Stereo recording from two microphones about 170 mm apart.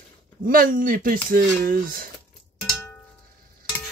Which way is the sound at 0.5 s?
55° right (ahead or behind).